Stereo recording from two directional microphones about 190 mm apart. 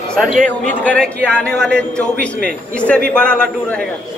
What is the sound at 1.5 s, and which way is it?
Speech, 60° right (ahead or behind).